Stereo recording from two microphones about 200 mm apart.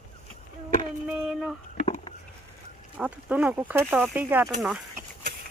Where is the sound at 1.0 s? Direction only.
5° right (ahead or behind).